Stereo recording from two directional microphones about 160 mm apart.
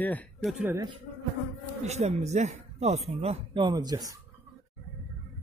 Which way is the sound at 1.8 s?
45° right (ahead or behind).